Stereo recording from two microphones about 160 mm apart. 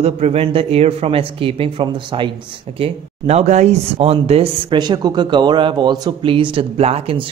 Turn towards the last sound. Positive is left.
turn(degrees=-40)  # may be behind; listen again after turning